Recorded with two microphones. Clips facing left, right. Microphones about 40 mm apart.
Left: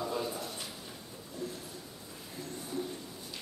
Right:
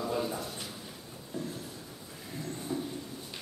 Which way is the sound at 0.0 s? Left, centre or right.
Centre.